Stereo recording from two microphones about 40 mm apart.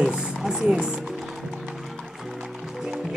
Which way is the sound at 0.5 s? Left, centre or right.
Centre.